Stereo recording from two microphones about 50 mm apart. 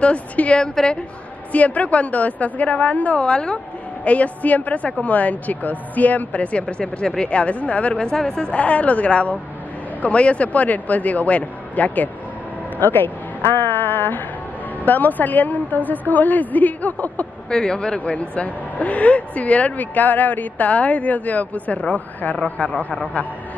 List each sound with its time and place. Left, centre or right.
0.0 s a woman's voice: left
6.8 s speech: centre
7.2 s a woman's voice: left
17.5 s speech: centre